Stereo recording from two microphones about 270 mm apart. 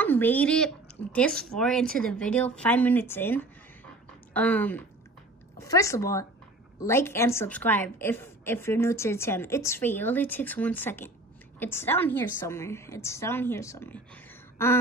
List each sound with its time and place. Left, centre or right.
0.0 s a woman's voice: centre